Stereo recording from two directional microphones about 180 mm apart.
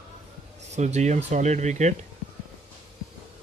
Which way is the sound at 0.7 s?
40° right (ahead or behind).